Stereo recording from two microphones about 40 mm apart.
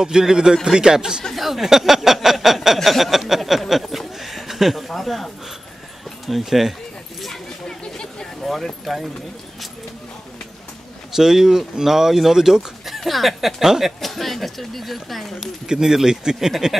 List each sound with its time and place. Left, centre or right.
0.0 s speech: centre
1.3 s speech: centre
2.2 s a sound: centre
4.2 s speech: centre
6.2 s a sound: centre
7.6 s a sound: centre
8.9 s speech: centre
11.1 s speech: centre
12.8 s speech: centre
13.6 s speech: centre
14.0 s a sound: centre
15.6 s speech: centre